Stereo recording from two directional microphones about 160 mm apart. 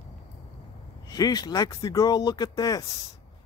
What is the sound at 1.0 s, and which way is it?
Speech, 25° left (ahead or behind).